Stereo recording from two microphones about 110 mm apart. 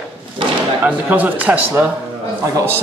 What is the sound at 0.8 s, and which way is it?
Speech, 15° right (ahead or behind).